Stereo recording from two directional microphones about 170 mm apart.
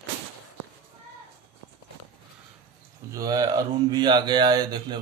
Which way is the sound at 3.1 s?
20° right (ahead or behind).